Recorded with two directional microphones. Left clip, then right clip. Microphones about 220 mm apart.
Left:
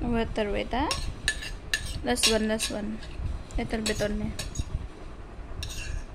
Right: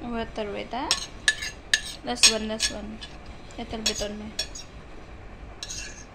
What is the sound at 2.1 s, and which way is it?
Speech, 30° left (ahead or behind).